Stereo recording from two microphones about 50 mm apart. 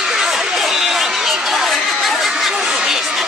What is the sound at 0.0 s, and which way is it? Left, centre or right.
Chatter, centre.